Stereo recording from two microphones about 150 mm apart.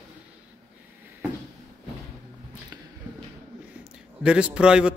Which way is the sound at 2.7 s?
25° right (ahead or behind).